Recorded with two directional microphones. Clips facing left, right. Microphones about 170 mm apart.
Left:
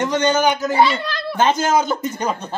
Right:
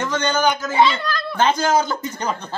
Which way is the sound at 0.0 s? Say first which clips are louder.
Left 3 dB; 20° left (ahead or behind).